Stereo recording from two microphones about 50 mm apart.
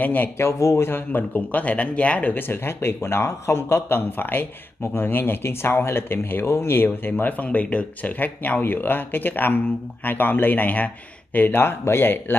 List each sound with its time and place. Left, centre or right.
0.0 s speech: left
0.4 s a man's voice: left
0.8 s speech: left
2.3 s speech: left
7.4 s speech: left